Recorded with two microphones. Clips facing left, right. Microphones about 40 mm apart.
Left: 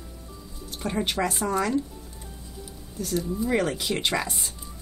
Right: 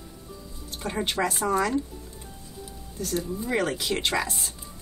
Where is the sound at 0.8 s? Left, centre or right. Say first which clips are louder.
Left 1 dB; centre.